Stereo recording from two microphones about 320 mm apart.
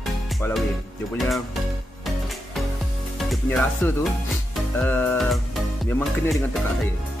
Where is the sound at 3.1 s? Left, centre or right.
Centre.